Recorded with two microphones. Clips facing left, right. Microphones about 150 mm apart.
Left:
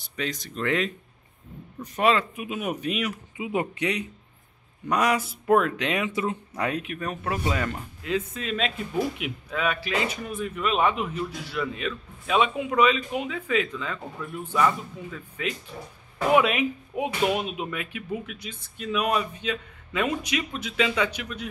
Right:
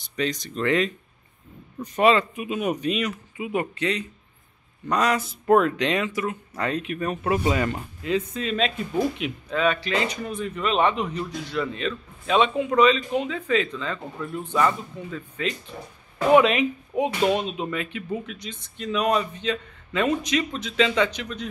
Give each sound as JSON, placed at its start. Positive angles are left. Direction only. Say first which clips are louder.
{"t": 0.0, "sound": "speech", "louder": "right 5 dB", "side_deg": 5}
{"t": 3.3, "sound": "speech", "louder": "even", "side_deg": 20}